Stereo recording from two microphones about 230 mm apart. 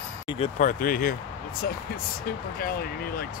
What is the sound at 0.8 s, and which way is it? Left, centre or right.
Speech, left.